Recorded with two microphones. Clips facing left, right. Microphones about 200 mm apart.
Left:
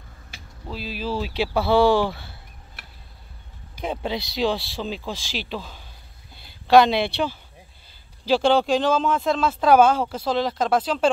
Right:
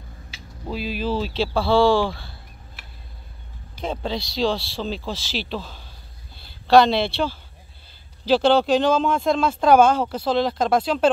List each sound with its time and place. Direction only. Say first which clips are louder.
0.7 s speech: right 4 dB; centre (ahead or behind); by 2.3 s 20° left (ahead or behind)
3.8 s speech: even; 15° left (ahead or behind)